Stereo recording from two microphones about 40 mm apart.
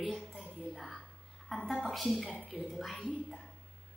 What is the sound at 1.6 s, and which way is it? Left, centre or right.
Speech, left.